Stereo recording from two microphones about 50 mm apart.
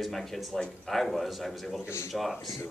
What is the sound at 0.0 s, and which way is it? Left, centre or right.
Speech, centre.